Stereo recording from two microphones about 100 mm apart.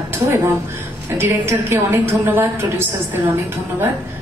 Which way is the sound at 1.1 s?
25° right (ahead or behind).